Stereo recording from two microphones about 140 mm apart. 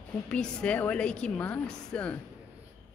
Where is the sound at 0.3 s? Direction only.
5° left (ahead or behind).